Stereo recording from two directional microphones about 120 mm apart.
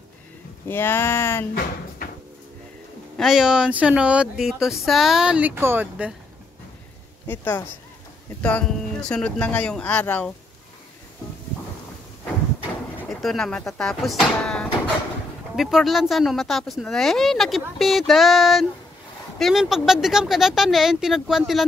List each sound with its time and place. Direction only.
0.7 s speech: 20° left (ahead or behind)
3.2 s speech: 5° right (ahead or behind)
7.2 s speech: 20° left (ahead or behind)
13.1 s speech: 5° left (ahead or behind)